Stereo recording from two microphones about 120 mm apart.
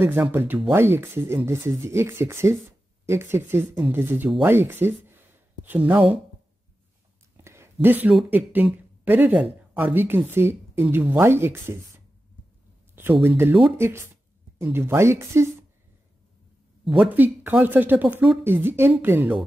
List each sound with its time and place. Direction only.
0.0 s speech: 20° right (ahead or behind)
7.3 s a sound: 20° right (ahead or behind)
8.3 s speech: 15° right (ahead or behind)
12.9 s speech: 20° right (ahead or behind)
16.9 s speech: 15° right (ahead or behind)